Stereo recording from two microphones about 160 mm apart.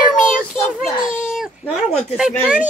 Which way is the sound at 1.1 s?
5° right (ahead or behind).